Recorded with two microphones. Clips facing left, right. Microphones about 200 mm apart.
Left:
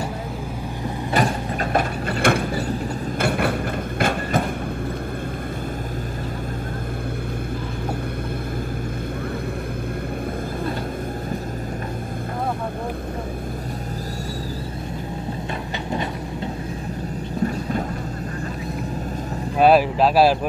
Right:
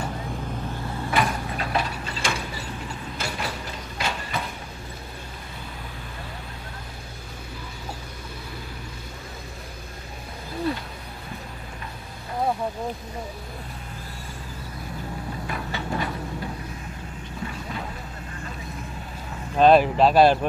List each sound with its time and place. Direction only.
1.1 s mechanisms: 45° left (ahead or behind)
4.0 s a sound: 50° left (ahead or behind)
19.6 s vehicle: 5° left (ahead or behind)